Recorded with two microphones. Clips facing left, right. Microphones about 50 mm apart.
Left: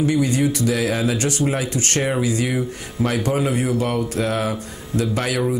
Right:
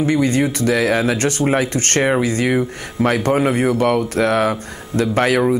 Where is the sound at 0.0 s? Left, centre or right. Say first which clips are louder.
Right 2 dB; right.